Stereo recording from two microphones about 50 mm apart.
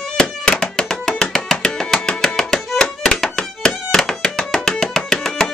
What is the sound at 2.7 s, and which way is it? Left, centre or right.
Violin, left.